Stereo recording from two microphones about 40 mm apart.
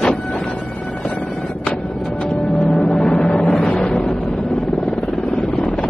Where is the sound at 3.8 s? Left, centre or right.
Centre.